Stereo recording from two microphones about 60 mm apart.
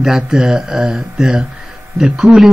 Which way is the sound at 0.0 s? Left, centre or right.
Centre.